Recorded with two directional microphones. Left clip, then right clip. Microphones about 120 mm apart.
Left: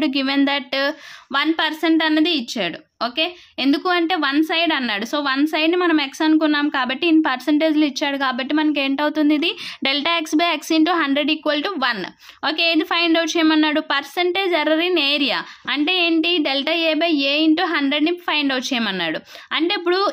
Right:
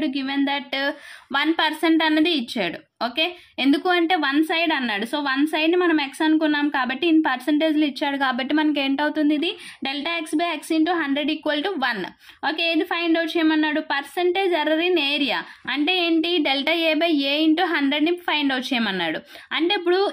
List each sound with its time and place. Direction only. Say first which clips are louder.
0.0 s speech: left 5 dB; 50° left (ahead or behind); by 0.9 s 30° left (ahead or behind)
1.3 s a woman's voice: left 1 dB; 15° left (ahead or behind); by 9.6 s 35° left (ahead or behind)
9.8 s speech: left 6 dB; 50° left (ahead or behind)
11.1 s a woman's voice: left 4 dB; 30° left (ahead or behind)
12.4 s a woman's voice: left 3 dB; 40° left (ahead or behind)
19.8 s speech: left 1 dB; 40° left (ahead or behind)